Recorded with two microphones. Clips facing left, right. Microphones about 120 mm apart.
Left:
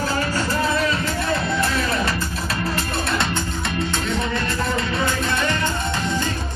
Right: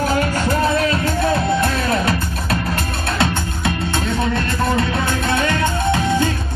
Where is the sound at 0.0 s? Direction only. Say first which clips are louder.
Right 4 dB; 65° right (ahead or behind).